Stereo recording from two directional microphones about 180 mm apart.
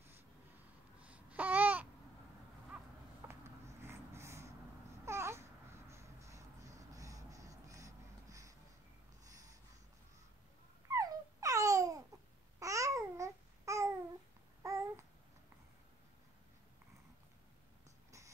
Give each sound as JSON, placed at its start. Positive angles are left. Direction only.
{"t": 1.0, "sound": "babbling", "side_deg": -10}
{"t": 2.7, "sound": "a sound", "side_deg": -10}
{"t": 5.0, "sound": "babbling", "side_deg": -15}
{"t": 10.9, "sound": "babbling", "side_deg": -20}